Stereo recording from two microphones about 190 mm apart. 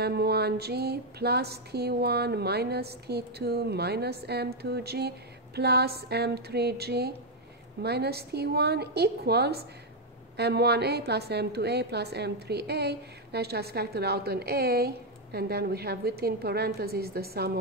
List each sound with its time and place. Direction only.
0.0 s speech: 55° right (ahead or behind)